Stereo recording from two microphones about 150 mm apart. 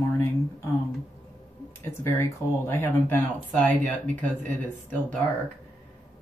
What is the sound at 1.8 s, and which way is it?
Speech, 15° left (ahead or behind).